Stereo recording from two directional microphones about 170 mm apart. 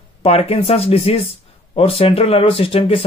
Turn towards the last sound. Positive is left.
turn(degrees=35)  # may be behind; listen again after turning